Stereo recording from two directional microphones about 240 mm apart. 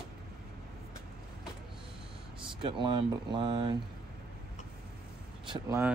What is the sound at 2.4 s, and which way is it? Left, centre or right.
Speech, right.